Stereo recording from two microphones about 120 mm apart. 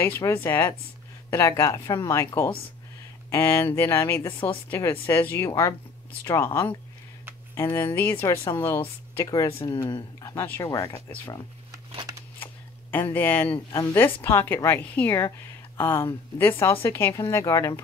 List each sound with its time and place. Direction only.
0.0 s a woman's voice: 20° left (ahead or behind)
4.3 s speech: 45° left (ahead or behind)
4.6 s a woman's voice: 20° left (ahead or behind)
10.3 s a woman's voice: 20° left (ahead or behind)
12.9 s a woman's voice: 15° left (ahead or behind)